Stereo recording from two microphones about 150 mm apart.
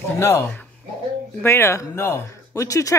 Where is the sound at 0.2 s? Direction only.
15° left (ahead or behind).